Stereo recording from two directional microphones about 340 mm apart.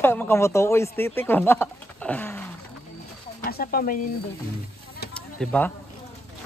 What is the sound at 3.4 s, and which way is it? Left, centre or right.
Speech, left.